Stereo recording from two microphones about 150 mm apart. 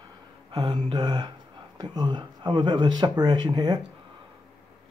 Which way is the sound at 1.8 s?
25° right (ahead or behind).